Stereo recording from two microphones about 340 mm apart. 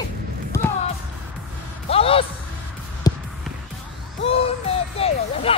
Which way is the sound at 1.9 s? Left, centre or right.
Centre.